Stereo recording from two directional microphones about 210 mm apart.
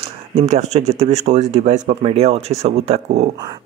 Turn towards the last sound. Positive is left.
turn(degrees=-30)  # may be behind; listen again after turning